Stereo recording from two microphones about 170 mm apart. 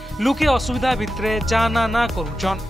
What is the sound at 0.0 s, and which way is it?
Speech, centre (ahead or behind).